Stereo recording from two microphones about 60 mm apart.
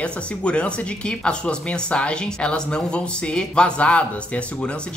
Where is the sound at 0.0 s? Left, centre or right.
Centre.